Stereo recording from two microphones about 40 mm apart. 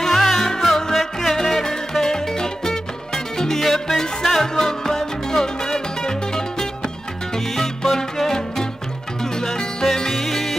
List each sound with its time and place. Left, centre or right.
0.0 s music: centre